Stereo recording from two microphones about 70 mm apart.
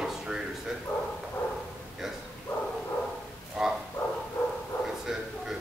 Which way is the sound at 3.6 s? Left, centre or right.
Centre.